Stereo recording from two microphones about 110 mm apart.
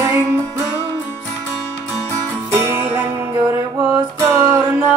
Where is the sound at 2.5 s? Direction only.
20° right (ahead or behind).